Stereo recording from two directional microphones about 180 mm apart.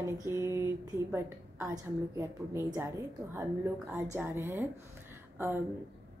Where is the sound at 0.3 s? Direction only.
15° right (ahead or behind).